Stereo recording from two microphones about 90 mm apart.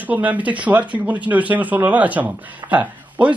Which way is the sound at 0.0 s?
20° right (ahead or behind).